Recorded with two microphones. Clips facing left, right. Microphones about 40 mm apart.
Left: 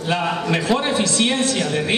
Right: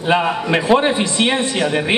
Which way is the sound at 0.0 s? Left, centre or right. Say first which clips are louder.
Right 5 dB; right.